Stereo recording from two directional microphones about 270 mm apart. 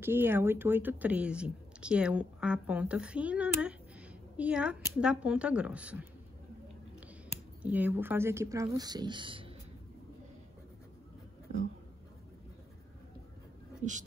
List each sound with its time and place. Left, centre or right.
0.0 s speech: centre
7.6 s speech: centre
13.8 s speech: right